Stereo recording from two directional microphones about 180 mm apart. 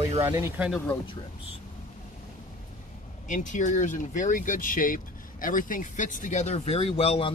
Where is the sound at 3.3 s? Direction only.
45° left (ahead or behind).